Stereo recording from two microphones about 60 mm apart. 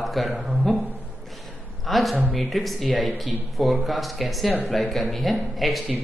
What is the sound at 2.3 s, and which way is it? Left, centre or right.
Speech, centre.